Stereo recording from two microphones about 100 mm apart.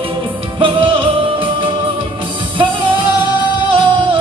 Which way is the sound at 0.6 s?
60° right (ahead or behind).